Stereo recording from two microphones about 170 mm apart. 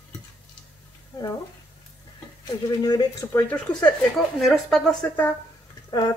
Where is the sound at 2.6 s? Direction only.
20° left (ahead or behind).